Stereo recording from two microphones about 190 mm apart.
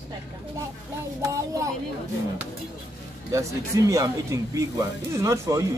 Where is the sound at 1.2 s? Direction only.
15° right (ahead or behind).